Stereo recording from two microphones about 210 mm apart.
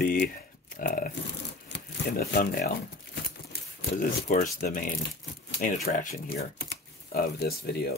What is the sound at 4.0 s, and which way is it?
Speech, 35° left (ahead or behind).